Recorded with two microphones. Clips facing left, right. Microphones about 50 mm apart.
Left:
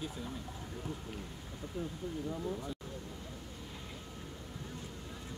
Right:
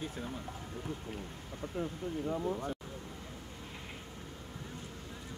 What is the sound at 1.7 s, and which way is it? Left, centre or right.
Speech, right.